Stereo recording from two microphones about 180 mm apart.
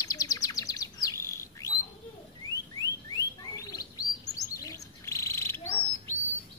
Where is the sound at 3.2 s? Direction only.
20° left (ahead or behind).